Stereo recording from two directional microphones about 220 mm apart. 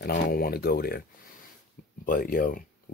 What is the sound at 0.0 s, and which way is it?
Speech, 45° left (ahead or behind).